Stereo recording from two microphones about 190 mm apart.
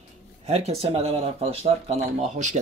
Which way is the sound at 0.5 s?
35° right (ahead or behind).